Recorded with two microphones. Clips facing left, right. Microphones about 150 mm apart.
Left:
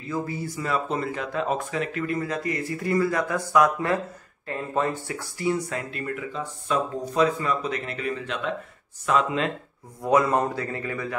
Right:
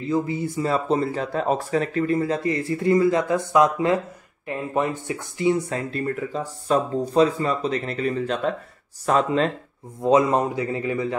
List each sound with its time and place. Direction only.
0.1 s speech: 20° right (ahead or behind)
0.7 s speech: 30° right (ahead or behind)
10.0 s speech: 20° right (ahead or behind)